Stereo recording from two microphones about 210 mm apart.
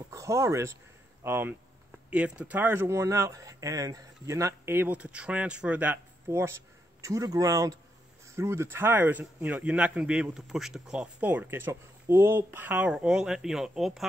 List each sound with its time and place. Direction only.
0.1 s speech: 15° right (ahead or behind)